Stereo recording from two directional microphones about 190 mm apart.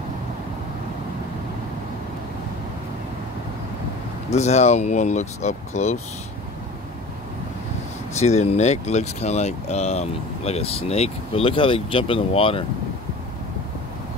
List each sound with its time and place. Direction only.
4.3 s speech: 35° left (ahead or behind)
8.2 s speech: 35° left (ahead or behind)